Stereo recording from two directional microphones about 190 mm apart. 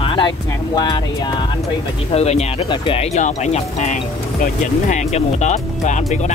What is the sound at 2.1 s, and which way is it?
Speech, 35° left (ahead or behind).